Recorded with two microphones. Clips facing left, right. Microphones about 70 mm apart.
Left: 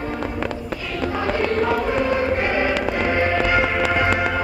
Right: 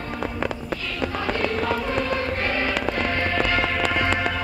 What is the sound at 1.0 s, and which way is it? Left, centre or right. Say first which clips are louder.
Music: left 4 dB; centre.